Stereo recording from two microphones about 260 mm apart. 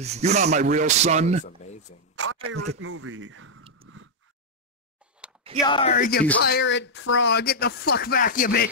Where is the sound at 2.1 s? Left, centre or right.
Right.